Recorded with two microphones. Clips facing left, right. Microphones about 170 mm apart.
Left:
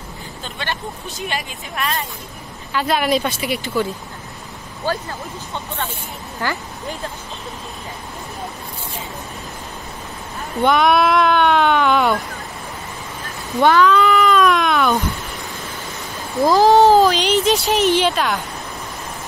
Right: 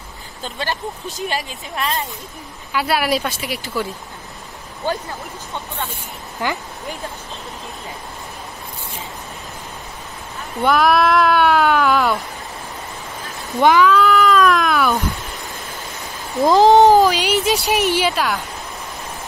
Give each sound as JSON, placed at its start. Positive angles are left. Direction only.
{"t": 1.3, "sound": "speech", "side_deg": -25}
{"t": 2.7, "sound": "speech", "side_deg": -5}
{"t": 4.9, "sound": "speech", "side_deg": -20}
{"t": 6.4, "sound": "speech", "side_deg": -15}
{"t": 10.6, "sound": "speech", "side_deg": 0}
{"t": 13.6, "sound": "speech", "side_deg": -10}
{"t": 16.4, "sound": "speech", "side_deg": -20}